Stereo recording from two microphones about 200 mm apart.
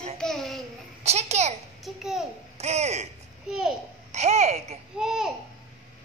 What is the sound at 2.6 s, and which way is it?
Speech, 35° right (ahead or behind).